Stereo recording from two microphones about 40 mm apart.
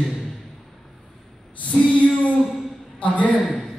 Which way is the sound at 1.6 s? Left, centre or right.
Left.